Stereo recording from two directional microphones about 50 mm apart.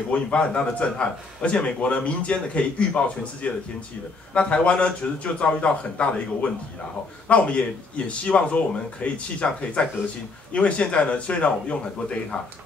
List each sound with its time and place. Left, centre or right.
0.1 s speech: left
7.2 s speech: left